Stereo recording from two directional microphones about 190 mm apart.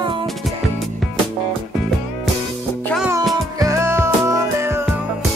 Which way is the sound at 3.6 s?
15° right (ahead or behind).